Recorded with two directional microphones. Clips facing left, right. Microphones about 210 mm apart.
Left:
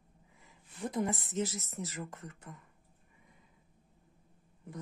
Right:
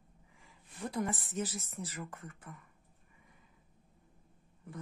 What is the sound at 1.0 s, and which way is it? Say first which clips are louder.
Speech: left 3 dB; 25° left (ahead or behind).